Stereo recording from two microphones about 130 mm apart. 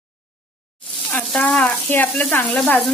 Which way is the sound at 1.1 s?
10° left (ahead or behind).